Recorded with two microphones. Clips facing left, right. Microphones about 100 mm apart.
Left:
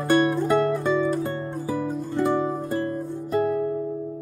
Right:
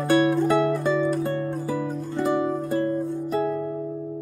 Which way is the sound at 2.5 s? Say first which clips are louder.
Right 2 dB; 10° left (ahead or behind).